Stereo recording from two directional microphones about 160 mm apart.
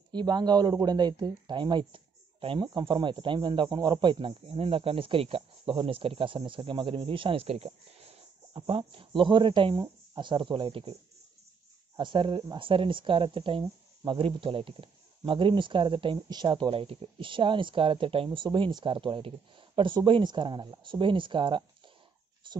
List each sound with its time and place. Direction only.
0.1 s speech: 25° right (ahead or behind)
12.0 s speech: 30° right (ahead or behind)